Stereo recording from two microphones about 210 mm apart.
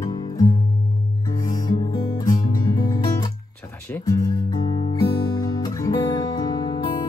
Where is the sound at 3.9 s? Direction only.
10° left (ahead or behind).